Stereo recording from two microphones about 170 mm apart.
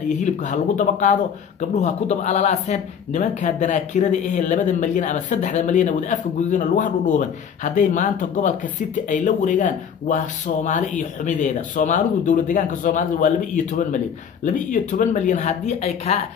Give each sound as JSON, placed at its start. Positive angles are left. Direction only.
{"t": 0.0, "sound": "speech", "side_deg": 45}